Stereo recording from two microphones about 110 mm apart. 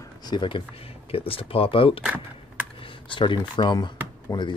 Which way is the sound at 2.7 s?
50° left (ahead or behind).